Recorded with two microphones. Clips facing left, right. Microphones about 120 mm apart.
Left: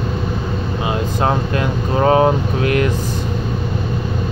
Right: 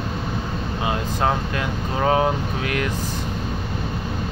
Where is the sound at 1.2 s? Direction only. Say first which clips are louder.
Left 4 dB; 40° left (ahead or behind).